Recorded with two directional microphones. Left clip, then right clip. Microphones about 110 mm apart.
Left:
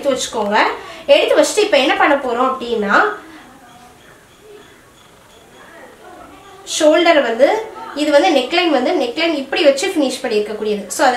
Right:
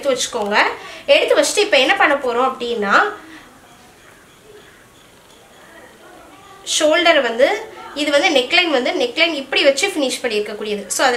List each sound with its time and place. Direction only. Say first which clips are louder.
0.1 s a woman's voice: left 1 dB; 15° right (ahead or behind)
6.6 s a woman's voice: left 2 dB; 15° right (ahead or behind)